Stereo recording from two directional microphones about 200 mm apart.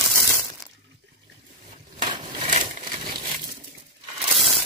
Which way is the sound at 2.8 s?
25° right (ahead or behind).